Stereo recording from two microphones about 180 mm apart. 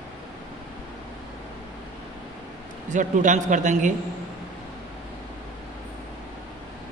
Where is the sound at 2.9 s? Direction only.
45° right (ahead or behind).